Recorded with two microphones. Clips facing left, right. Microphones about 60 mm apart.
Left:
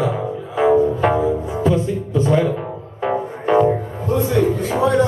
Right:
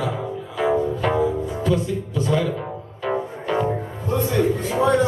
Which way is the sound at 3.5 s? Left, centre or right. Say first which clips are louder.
Left 8 dB; left.